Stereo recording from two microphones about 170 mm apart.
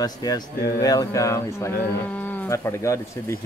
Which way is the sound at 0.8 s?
20° left (ahead or behind).